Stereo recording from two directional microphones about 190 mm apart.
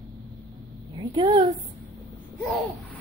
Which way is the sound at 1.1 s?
25° right (ahead or behind).